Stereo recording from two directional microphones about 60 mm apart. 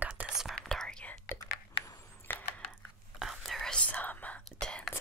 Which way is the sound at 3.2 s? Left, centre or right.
Centre.